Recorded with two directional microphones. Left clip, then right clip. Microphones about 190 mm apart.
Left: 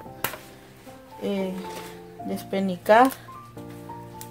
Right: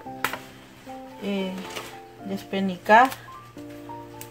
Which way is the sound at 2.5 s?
50° left (ahead or behind).